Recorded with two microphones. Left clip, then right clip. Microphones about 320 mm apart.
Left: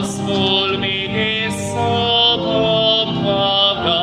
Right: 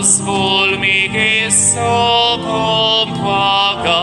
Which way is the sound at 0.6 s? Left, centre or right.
Centre.